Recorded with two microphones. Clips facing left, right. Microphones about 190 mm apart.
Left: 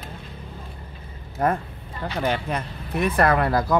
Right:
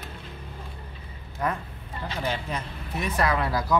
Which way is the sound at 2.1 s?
60° left (ahead or behind).